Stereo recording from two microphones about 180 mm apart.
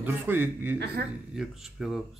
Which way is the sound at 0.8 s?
65° right (ahead or behind).